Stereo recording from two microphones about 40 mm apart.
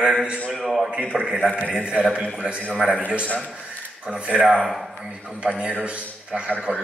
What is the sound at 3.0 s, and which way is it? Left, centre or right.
Speech, right.